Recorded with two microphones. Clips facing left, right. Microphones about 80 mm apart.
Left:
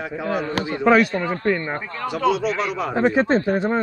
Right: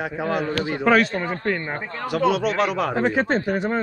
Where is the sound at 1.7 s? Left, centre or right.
Centre.